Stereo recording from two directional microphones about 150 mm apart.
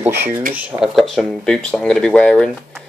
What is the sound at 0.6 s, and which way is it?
Speech, 5° right (ahead or behind).